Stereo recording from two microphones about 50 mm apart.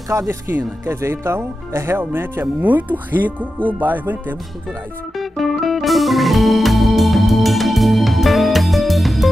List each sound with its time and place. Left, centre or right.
0.1 s speech: right
0.8 s speech: right
2.6 s speech: right
5.1 s music: centre